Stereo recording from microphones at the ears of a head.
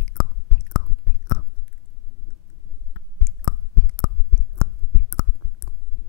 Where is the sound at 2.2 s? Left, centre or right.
Left.